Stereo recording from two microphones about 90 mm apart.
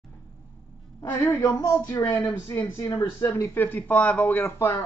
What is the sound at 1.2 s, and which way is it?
Speech, 45° left (ahead or behind).